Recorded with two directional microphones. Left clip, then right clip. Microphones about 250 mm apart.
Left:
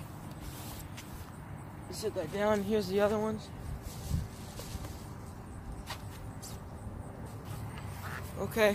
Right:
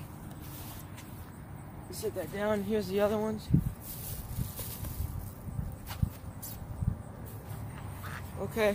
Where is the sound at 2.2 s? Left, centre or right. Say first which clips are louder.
Left 2 dB; centre.